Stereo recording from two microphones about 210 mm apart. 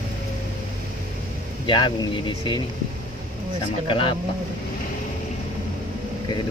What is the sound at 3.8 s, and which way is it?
Speech, 25° left (ahead or behind).